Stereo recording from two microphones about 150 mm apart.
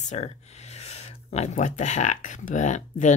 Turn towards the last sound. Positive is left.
turn(degrees=55)  # may be behind; listen again after turning